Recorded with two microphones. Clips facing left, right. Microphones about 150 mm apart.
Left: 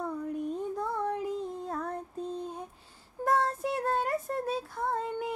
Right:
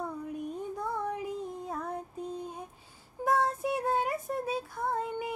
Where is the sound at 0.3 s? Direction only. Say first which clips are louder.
Left 3 dB; 5° right (ahead or behind).